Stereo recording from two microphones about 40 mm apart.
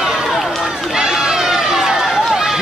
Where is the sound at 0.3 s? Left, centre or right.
Centre.